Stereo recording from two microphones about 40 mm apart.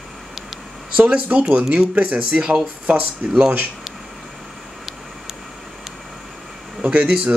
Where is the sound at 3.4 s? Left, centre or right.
Right.